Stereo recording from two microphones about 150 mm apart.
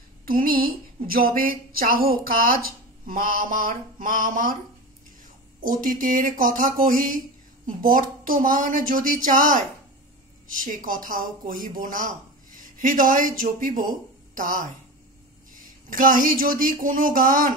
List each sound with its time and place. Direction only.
0.2 s speech: 75° right (ahead or behind)
5.6 s speech: 65° right (ahead or behind)